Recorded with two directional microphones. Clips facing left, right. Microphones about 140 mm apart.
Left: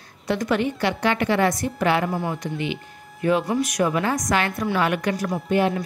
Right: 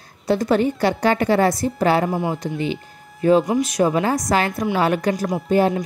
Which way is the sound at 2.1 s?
25° right (ahead or behind).